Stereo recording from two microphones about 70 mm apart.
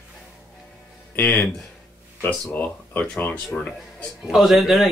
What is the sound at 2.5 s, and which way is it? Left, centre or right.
Speech, left.